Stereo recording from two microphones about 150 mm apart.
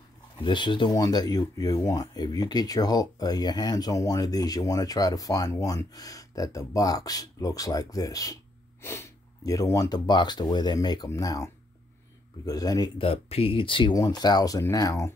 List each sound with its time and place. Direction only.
0.4 s speech: 35° left (ahead or behind)
0.8 s speech: 20° left (ahead or behind)
13.0 s speech: 40° left (ahead or behind); by 15.1 s 20° left (ahead or behind)